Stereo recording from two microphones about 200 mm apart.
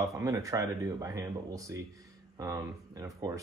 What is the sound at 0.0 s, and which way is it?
Speech, 15° right (ahead or behind).